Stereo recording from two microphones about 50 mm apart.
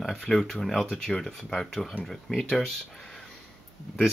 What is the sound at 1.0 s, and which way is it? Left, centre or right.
Speech, centre.